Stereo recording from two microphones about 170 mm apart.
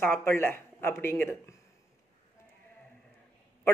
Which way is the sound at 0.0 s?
15° left (ahead or behind).